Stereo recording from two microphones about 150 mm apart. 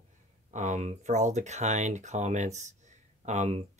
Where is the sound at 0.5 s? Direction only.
55° right (ahead or behind).